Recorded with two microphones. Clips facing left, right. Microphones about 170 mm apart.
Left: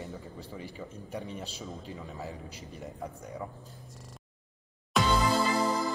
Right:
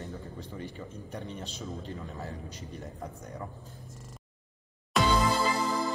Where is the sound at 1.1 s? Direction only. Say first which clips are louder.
Left 1 dB; 5° left (ahead or behind).